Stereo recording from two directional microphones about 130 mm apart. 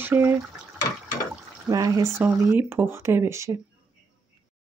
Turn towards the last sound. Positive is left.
turn(degrees=-20)  # may be behind; listen again after turning